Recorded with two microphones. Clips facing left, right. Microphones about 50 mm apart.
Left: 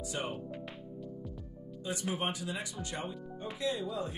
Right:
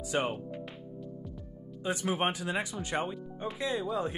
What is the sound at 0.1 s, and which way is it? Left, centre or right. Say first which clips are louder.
Speech: right 8 dB; right.